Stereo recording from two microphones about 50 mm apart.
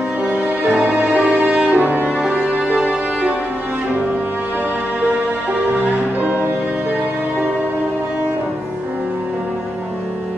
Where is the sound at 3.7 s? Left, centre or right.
Right.